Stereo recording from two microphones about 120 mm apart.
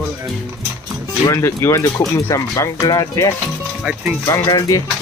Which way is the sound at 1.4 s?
25° left (ahead or behind).